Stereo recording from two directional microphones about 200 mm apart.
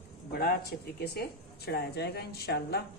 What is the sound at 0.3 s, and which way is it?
Speech, 50° left (ahead or behind).